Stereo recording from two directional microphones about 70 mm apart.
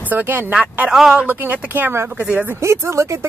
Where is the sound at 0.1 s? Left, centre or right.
Right.